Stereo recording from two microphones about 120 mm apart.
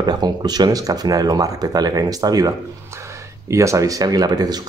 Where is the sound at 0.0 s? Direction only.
35° right (ahead or behind).